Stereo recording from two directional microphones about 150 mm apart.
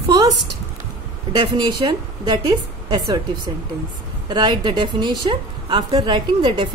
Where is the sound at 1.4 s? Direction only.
30° right (ahead or behind).